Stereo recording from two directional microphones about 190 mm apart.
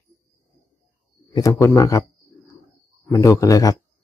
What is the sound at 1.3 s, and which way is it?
Speech, 15° left (ahead or behind).